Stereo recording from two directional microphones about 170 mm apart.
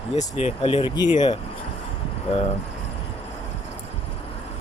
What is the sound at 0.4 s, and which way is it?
Speech, 35° left (ahead or behind).